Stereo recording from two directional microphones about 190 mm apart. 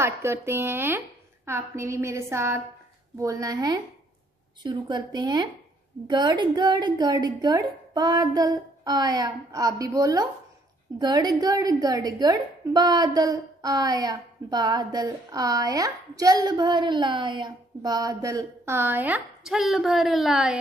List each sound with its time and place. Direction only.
0.0 s a woman's voice: 15° right (ahead or behind)